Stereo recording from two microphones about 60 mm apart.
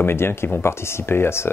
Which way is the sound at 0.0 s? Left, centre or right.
Left.